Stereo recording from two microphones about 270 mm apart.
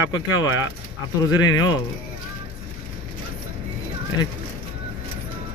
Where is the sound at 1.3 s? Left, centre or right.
Centre.